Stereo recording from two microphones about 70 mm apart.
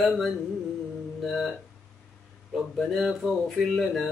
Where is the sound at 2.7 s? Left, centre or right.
Centre.